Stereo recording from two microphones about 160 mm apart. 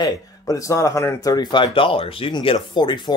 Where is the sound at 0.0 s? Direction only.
20° left (ahead or behind).